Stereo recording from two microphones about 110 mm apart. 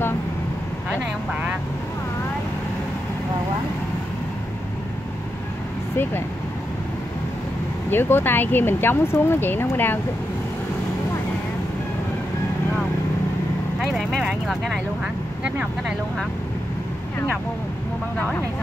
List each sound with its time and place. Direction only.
7.9 s speech: 20° left (ahead or behind)
13.7 s speech: centre (ahead or behind)